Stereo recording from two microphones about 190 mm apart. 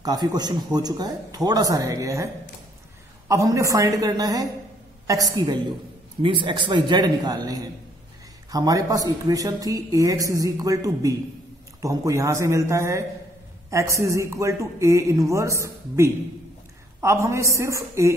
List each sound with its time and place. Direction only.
0.0 s speech: 20° right (ahead or behind)
3.3 s speech: 15° right (ahead or behind)